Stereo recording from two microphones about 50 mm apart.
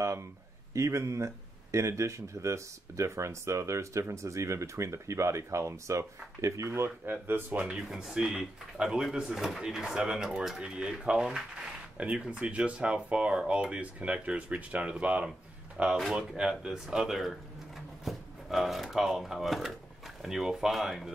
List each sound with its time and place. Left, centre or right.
0.0 s a sound: right
0.7 s speech: right
7.1 s speech: right
7.5 s speech: right
7.9 s speech: centre
8.2 s speech: centre
16.2 s speech: centre